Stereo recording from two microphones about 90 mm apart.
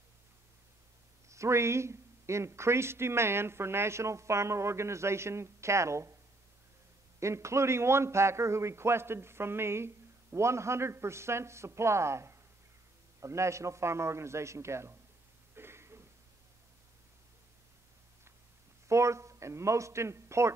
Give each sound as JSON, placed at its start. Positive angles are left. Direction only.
{"t": 1.3, "sound": "a man's voice", "side_deg": -30}
{"t": 7.2, "sound": "a man's voice", "side_deg": -30}
{"t": 15.5, "sound": "a sound", "side_deg": -25}
{"t": 18.9, "sound": "a man's voice", "side_deg": -35}